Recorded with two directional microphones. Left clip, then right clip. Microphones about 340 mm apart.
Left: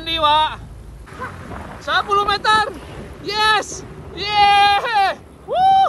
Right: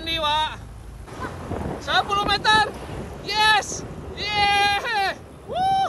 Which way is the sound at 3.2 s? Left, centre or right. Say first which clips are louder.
Left 2 dB; centre.